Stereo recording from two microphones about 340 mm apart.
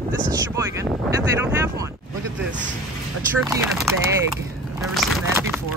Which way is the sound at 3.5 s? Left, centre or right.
Centre.